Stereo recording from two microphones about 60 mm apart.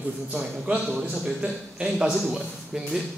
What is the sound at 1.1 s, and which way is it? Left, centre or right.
A man's voice, centre.